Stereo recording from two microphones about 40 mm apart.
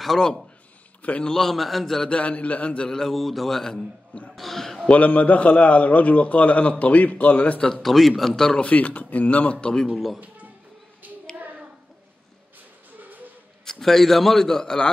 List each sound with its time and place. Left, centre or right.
0.0 s a man's voice: centre
2.0 s a man's voice: left
2.9 s speech: centre
4.8 s a man's voice: left
7.7 s a man's voice: centre
8.5 s a man's voice: left
9.7 s a man's voice: centre
10.2 s a sound: right
11.3 s hands: right
13.7 s a man's voice: centre